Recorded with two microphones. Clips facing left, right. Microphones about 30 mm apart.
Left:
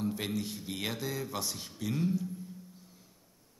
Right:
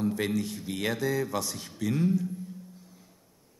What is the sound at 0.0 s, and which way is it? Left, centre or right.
Speech, centre.